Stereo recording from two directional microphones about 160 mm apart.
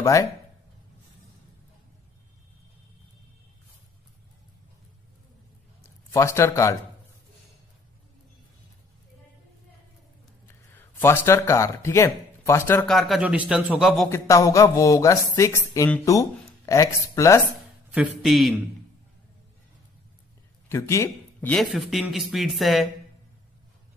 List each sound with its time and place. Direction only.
0.0 s speech: 20° left (ahead or behind)
6.1 s speech: 15° left (ahead or behind)
10.8 s speech: 15° left (ahead or behind)
12.8 s a man's voice: centre (ahead or behind)
14.0 s speech: 20° left (ahead or behind)
17.9 s a man's voice: centre (ahead or behind)
20.6 s speech: 15° left (ahead or behind)
21.5 s a man's voice: centre (ahead or behind)